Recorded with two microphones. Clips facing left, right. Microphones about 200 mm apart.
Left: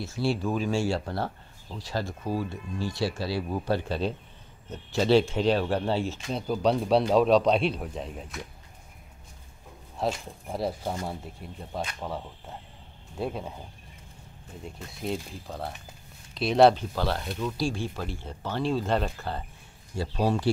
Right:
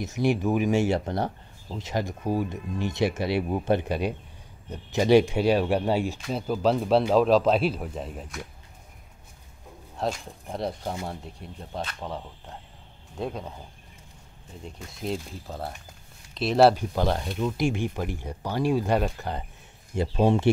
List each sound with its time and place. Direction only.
0.0 s speech: 20° right (ahead or behind); by 8.5 s centre (ahead or behind)
9.9 s speech: 5° left (ahead or behind)
15.0 s speech: centre (ahead or behind)
16.9 s speech: 15° right (ahead or behind)